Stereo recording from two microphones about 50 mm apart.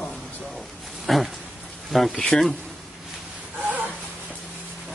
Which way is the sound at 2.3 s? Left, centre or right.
Centre.